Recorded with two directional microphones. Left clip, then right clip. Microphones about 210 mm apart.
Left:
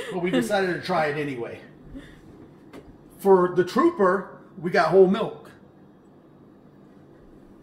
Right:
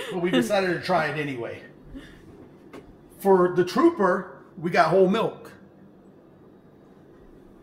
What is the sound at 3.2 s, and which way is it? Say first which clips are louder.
Speech: left 1 dB; 25° right (ahead or behind).